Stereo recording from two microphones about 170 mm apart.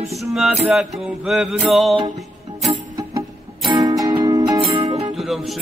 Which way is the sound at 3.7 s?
20° right (ahead or behind).